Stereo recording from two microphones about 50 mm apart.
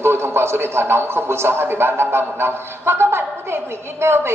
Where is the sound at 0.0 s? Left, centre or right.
Right.